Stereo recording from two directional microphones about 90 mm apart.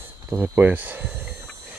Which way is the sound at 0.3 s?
20° right (ahead or behind).